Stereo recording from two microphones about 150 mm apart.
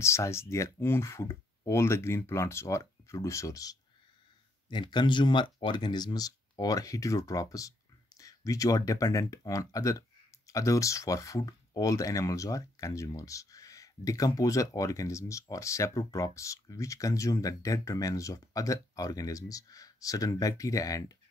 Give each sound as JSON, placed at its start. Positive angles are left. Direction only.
{"t": 0.0, "sound": "speech", "side_deg": 20}